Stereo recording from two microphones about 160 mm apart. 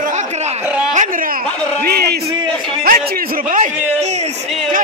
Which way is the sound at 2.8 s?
65° right (ahead or behind).